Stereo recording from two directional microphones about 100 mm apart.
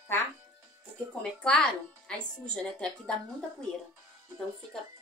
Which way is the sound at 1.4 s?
10° left (ahead or behind).